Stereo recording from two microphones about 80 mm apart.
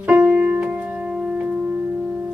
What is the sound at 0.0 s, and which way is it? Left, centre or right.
Music, centre.